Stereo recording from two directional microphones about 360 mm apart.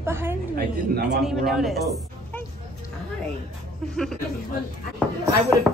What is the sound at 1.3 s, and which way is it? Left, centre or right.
Speech, centre.